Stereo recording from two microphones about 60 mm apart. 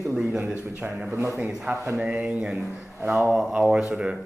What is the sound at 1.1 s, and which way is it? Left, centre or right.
Speech, right.